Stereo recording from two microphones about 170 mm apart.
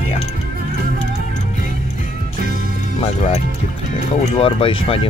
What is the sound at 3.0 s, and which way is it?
Speech, 35° left (ahead or behind).